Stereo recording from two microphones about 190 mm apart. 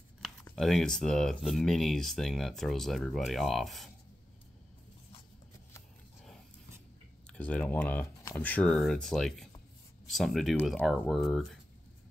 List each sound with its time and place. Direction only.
0.6 s speech: centre (ahead or behind)
7.2 s speech: 5° left (ahead or behind)